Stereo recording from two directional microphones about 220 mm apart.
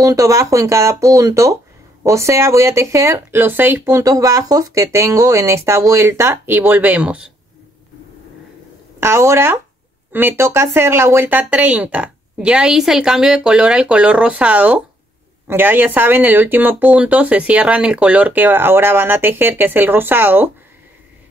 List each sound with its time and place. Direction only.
0.0 s speech: 15° right (ahead or behind)
9.0 s speech: 10° right (ahead or behind)